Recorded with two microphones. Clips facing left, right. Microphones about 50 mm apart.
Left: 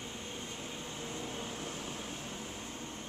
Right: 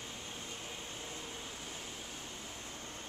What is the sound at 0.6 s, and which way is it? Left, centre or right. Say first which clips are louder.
Air conditioning: left 3 dB; left.